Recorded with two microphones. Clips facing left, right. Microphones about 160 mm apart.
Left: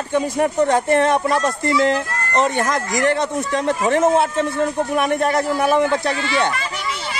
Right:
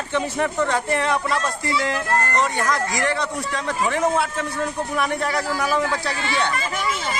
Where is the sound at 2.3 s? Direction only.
25° left (ahead or behind).